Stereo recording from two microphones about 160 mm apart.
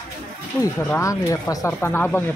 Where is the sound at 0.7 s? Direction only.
10° left (ahead or behind).